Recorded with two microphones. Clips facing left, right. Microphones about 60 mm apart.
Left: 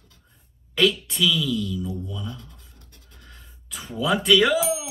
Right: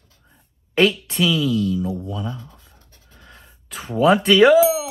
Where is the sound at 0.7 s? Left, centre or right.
Right.